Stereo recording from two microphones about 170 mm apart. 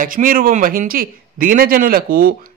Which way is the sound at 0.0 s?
55° right (ahead or behind).